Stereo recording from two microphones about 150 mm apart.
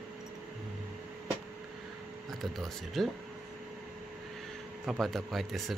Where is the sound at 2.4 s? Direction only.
Centre (ahead or behind).